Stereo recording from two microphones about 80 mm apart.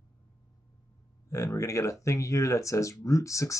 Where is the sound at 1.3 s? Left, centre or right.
Left.